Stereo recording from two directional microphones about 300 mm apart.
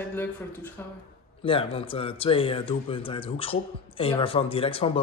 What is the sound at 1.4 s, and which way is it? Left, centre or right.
Speech, centre.